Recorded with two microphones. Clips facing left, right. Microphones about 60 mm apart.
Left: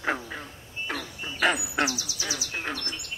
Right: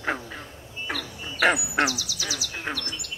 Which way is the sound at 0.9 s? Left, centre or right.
Centre.